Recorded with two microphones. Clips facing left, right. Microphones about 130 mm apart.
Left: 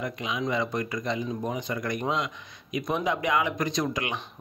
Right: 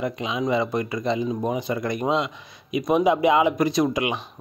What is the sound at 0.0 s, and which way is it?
A man's voice, 25° right (ahead or behind).